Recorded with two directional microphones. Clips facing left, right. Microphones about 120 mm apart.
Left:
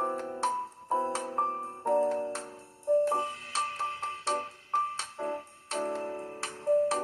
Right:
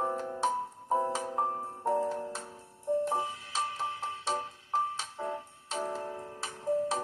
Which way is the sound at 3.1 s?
15° right (ahead or behind).